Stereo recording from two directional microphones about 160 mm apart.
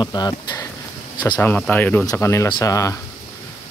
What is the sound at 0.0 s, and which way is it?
Speech, 25° left (ahead or behind).